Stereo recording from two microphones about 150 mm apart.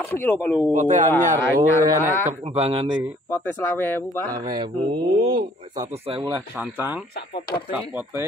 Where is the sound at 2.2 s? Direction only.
45° right (ahead or behind).